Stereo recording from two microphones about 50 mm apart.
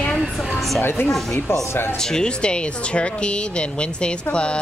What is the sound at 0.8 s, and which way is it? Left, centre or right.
Speech, left.